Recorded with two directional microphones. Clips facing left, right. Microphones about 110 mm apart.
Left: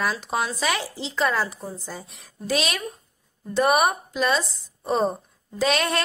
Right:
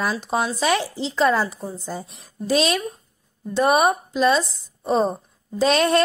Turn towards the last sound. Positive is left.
turn(degrees=-25)  # may be behind; listen again after turning